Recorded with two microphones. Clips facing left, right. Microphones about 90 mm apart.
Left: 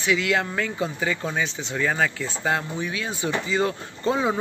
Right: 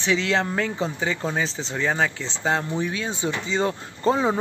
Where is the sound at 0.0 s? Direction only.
30° right (ahead or behind).